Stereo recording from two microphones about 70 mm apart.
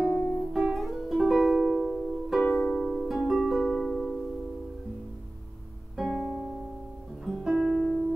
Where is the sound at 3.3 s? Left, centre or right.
Centre.